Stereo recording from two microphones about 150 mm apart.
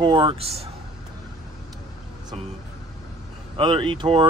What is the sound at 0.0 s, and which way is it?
Speech, 30° right (ahead or behind).